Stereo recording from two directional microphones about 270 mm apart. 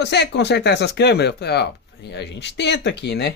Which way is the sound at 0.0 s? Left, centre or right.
Left.